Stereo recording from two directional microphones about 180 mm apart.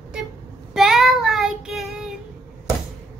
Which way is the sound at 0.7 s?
Centre (ahead or behind).